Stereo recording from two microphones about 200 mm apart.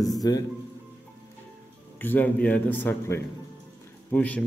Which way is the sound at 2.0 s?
10° left (ahead or behind).